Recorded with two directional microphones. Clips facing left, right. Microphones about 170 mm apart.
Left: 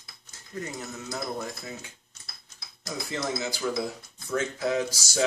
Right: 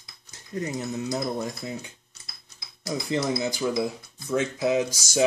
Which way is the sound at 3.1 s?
15° right (ahead or behind).